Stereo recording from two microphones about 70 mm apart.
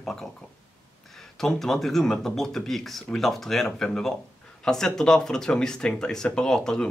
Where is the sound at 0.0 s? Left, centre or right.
Centre.